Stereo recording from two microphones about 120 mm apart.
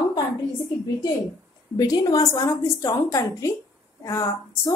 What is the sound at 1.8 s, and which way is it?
A woman's voice, 30° left (ahead or behind).